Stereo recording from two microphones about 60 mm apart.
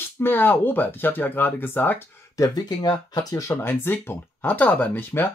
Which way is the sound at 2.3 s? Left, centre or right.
Left.